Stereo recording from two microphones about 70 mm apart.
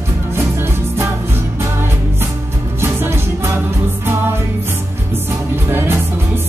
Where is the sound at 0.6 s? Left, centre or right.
Right.